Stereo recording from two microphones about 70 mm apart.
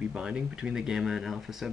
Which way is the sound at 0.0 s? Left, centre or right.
Centre.